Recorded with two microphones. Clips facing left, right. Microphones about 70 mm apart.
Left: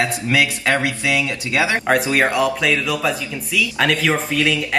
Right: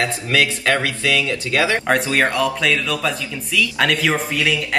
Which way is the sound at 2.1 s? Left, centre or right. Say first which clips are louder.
Left 1 dB; centre.